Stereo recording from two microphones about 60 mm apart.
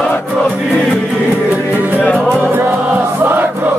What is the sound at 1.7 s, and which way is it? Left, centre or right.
Music, right.